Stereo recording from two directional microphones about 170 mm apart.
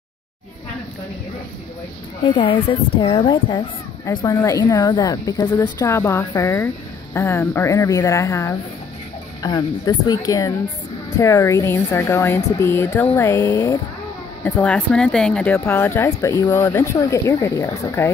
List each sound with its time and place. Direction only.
2.2 s a woman's voice: 30° left (ahead or behind)
14.4 s speech: 5° left (ahead or behind)
15.5 s speech: 15° left (ahead or behind)